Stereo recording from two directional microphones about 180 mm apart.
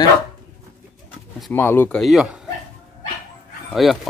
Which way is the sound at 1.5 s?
15° left (ahead or behind).